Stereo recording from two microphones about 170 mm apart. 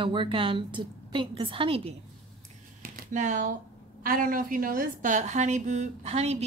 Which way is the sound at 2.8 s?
45° right (ahead or behind).